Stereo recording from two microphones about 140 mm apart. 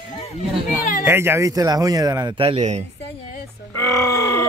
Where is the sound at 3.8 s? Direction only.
25° left (ahead or behind).